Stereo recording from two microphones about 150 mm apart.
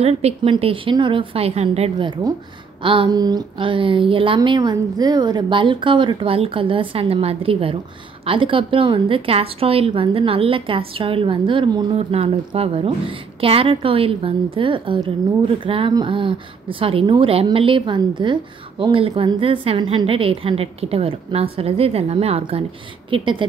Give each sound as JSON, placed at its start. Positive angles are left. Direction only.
{"t": 0.0, "sound": "a woman's voice", "side_deg": -45}